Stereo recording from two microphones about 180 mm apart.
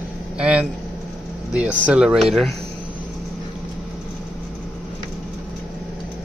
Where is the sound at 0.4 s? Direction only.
5° right (ahead or behind).